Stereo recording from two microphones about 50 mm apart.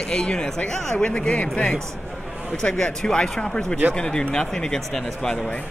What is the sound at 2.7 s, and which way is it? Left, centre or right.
Speech, centre.